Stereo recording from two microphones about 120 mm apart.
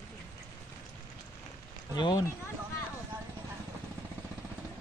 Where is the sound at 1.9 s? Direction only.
40° left (ahead or behind).